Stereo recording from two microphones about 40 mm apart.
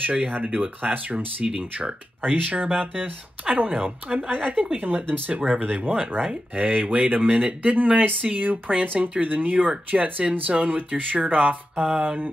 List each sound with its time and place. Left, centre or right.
0.0 s speech: right
5.3 s speech: right